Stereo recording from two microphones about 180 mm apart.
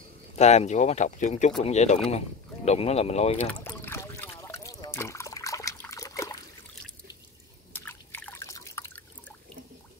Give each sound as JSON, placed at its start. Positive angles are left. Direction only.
{"t": 0.4, "sound": "speech", "side_deg": 35}
{"t": 3.6, "sound": "trickle", "side_deg": 10}
{"t": 7.7, "sound": "drip", "side_deg": 10}